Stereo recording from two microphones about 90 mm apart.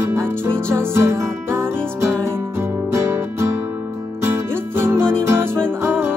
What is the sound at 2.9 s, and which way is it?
Music, 30° right (ahead or behind).